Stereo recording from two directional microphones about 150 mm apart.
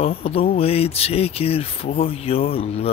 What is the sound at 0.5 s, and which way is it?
Speech, 40° left (ahead or behind).